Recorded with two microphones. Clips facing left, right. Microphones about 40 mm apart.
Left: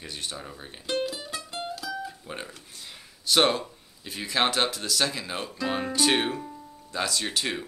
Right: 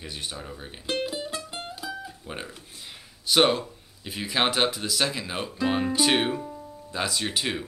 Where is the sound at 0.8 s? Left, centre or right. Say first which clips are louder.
Even; centre.